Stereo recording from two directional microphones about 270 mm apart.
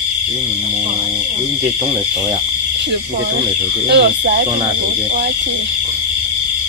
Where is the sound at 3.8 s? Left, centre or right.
Right.